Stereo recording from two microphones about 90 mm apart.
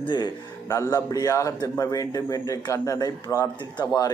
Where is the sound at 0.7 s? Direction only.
40° left (ahead or behind).